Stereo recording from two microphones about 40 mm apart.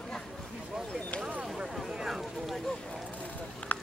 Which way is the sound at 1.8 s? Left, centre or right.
Centre.